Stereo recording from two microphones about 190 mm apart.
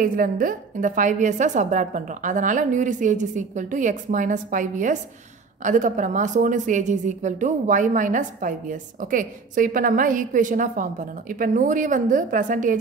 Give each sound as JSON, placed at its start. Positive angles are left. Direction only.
{"t": 0.0, "sound": "a woman's voice", "side_deg": -45}